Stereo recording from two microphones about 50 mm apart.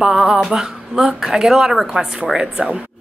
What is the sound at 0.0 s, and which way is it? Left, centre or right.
Speech, centre.